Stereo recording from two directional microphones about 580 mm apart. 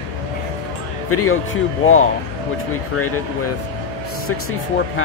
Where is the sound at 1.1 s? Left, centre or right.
Left.